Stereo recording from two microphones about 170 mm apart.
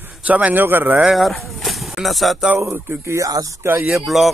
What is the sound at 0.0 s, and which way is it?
A man's voice, 10° right (ahead or behind).